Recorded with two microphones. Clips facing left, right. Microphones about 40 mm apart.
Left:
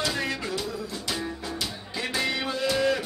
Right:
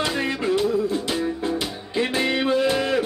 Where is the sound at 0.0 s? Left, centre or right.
Right.